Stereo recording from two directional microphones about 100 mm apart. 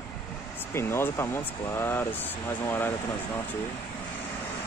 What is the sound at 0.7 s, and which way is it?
Speech, 25° left (ahead or behind).